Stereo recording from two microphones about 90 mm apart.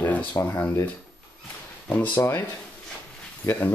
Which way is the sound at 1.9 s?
20° left (ahead or behind).